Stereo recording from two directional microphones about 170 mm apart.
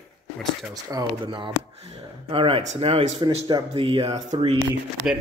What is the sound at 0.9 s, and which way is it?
Speech, 30° right (ahead or behind).